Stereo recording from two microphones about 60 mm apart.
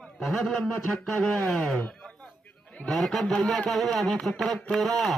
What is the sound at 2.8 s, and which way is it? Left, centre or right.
A man's voice, centre.